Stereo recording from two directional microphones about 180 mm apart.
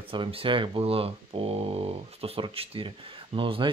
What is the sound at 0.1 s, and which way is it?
Speech, 30° right (ahead or behind).